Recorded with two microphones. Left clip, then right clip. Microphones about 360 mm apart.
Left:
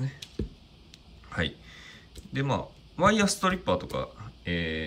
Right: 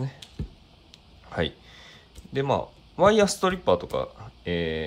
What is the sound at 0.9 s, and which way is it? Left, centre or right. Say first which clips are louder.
Speech: right 3 dB; centre.